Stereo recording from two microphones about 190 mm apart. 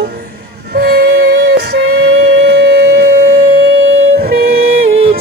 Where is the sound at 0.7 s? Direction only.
55° right (ahead or behind).